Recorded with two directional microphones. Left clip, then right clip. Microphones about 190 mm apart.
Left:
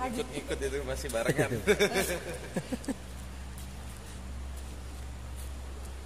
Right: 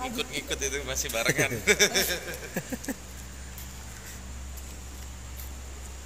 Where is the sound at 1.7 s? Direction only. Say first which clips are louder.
Right 4 dB; 50° left (ahead or behind).